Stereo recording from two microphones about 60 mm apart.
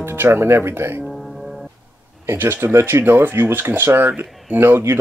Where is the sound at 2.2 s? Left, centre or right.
Right.